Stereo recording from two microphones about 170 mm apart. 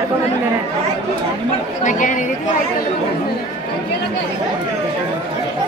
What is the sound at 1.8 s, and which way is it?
Speech, 50° left (ahead or behind).